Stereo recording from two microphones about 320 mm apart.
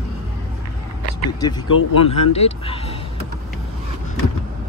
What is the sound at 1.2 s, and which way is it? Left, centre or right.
Speech, centre.